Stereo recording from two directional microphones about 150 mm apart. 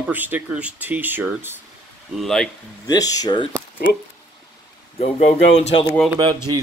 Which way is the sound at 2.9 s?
25° left (ahead or behind).